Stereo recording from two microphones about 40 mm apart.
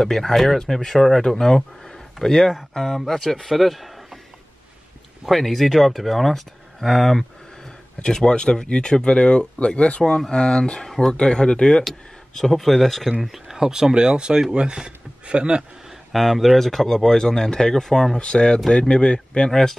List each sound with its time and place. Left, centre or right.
0.0 s speech: centre
5.2 s speech: centre
8.0 s speech: centre
11.9 s speech: centre
13.2 s speech: centre; by 15.6 s right
15.9 s speech: centre